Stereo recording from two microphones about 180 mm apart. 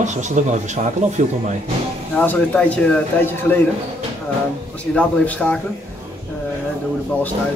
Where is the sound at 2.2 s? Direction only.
10° left (ahead or behind).